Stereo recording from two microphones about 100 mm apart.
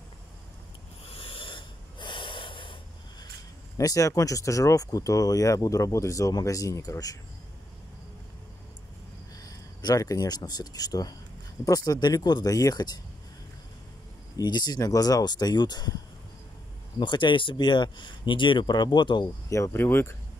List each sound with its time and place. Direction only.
1.1 s snort: 60° left (ahead or behind)
3.7 s speech: 35° left (ahead or behind)
9.4 s speech: 40° left (ahead or behind)
14.3 s speech: 45° left (ahead or behind)
17.0 s speech: 50° left (ahead or behind)
19.5 s speech: 25° left (ahead or behind)